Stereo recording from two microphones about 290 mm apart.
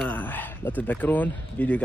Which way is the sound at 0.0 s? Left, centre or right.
Centre.